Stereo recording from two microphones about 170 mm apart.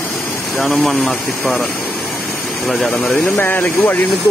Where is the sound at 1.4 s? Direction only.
10° left (ahead or behind).